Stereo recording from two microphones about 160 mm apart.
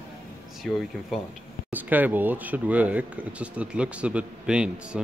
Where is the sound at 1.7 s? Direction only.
10° right (ahead or behind).